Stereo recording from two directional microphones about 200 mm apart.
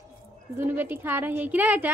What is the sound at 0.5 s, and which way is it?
A woman's voice, 10° right (ahead or behind).